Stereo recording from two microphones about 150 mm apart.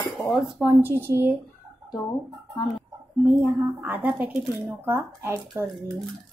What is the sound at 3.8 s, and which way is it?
Speech, 10° right (ahead or behind).